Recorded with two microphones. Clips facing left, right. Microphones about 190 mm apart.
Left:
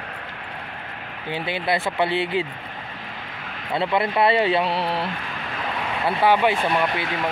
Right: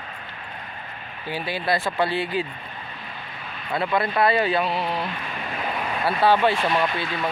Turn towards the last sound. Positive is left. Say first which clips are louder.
# left 1 dB
turn(degrees=90)